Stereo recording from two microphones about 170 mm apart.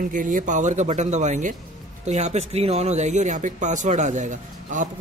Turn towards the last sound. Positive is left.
turn(degrees=-50)  # may be behind; listen again after turning